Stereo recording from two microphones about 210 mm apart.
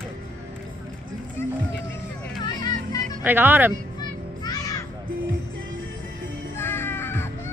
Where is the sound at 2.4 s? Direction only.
20° left (ahead or behind).